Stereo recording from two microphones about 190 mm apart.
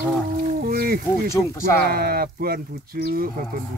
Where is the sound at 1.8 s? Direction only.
55° right (ahead or behind).